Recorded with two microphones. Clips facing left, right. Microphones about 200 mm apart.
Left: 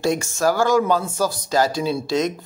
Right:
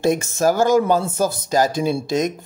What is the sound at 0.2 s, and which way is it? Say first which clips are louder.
Speech: right 2 dB; 20° right (ahead or behind).